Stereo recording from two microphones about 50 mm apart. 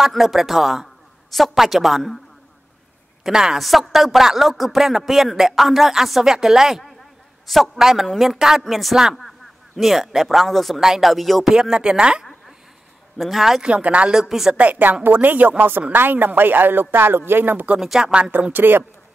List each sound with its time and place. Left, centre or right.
0.1 s speech: centre
3.3 s speech: centre
11.5 s speech: centre
13.2 s speech: centre
13.6 s speech: right
17.7 s speech: centre
18.5 s speech: right